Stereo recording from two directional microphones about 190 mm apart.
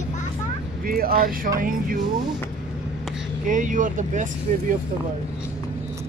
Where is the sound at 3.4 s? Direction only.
45° right (ahead or behind).